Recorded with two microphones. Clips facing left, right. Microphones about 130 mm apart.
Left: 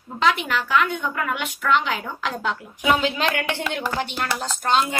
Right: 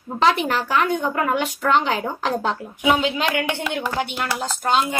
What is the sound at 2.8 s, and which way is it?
A woman's voice, 10° right (ahead or behind).